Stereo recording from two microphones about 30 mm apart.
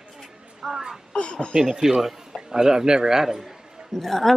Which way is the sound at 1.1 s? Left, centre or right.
Left.